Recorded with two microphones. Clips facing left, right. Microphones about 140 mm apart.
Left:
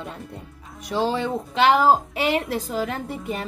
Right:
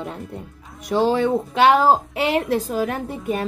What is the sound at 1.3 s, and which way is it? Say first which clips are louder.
Speech: right 3 dB; 25° right (ahead or behind).